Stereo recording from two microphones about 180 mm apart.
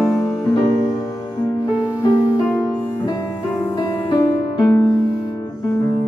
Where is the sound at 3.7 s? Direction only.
25° left (ahead or behind).